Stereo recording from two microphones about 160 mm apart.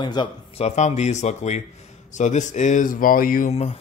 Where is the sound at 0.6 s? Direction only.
45° left (ahead or behind).